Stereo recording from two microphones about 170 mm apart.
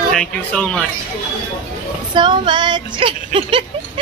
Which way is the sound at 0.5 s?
5° left (ahead or behind).